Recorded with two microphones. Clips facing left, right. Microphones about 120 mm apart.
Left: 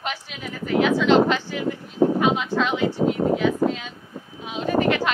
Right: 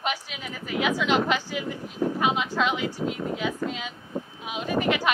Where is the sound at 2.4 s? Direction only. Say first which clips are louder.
Left 4 dB; 10° right (ahead or behind).